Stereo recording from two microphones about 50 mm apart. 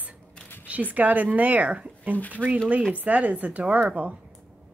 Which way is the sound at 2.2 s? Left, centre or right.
Left.